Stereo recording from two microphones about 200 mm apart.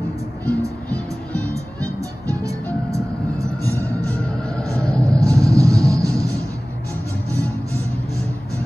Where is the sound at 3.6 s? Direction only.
10° left (ahead or behind).